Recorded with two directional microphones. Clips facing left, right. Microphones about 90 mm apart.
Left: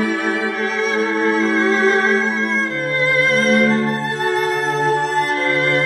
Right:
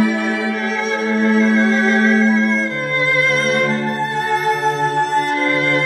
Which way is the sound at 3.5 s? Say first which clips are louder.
Left 2 dB; 25° right (ahead or behind).